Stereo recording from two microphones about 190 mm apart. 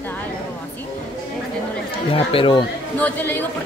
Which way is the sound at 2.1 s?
30° left (ahead or behind).